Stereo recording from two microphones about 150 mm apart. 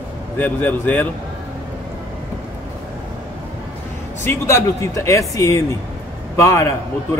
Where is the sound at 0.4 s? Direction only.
10° left (ahead or behind).